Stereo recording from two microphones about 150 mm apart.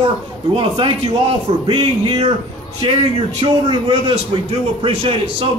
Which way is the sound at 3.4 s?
35° right (ahead or behind).